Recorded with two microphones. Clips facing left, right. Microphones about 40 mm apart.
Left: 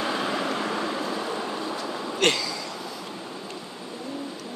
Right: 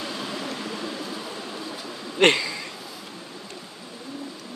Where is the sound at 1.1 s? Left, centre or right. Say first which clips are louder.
Left 5 dB; left.